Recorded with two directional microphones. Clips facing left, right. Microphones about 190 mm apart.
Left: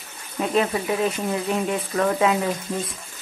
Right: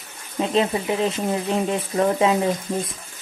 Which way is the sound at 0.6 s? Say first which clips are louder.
Right 1 dB; 25° right (ahead or behind).